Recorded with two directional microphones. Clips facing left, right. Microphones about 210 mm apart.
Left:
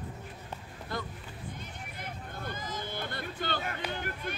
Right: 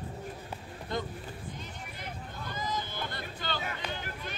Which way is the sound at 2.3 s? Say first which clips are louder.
Right 3 dB; 55° left (ahead or behind).